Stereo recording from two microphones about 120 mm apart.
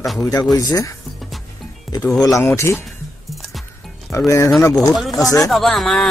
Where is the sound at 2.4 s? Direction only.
20° left (ahead or behind).